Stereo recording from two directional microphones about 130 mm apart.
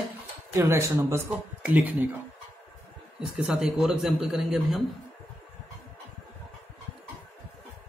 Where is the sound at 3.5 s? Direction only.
5° right (ahead or behind).